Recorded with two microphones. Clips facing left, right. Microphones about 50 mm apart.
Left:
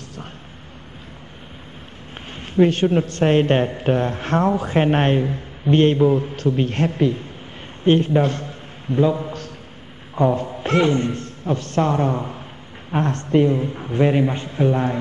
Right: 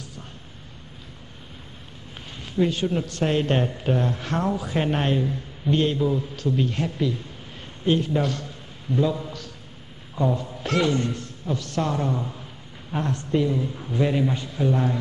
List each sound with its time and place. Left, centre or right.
2.3 s a man's voice: left
10.1 s a man's voice: left
10.5 s a man's voice: left
11.2 s a man's voice: left
13.1 s a man's voice: left